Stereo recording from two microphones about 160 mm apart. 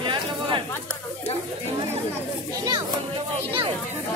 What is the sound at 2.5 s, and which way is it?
Speech, 25° right (ahead or behind).